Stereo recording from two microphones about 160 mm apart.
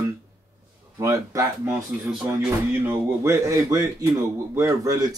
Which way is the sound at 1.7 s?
5° right (ahead or behind).